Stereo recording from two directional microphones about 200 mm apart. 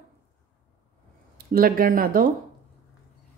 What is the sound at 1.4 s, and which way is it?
Speech, 45° right (ahead or behind).